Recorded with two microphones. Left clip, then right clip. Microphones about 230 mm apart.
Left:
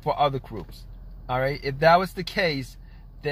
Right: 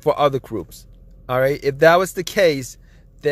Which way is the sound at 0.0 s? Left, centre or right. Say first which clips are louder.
Right 6 dB; right.